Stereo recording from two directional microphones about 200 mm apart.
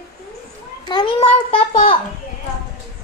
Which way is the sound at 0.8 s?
20° left (ahead or behind).